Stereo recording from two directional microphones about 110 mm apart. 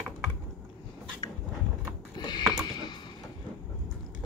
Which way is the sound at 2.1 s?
40° left (ahead or behind).